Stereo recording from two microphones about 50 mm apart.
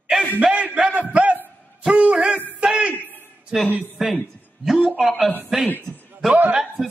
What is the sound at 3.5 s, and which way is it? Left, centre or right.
Speech, centre.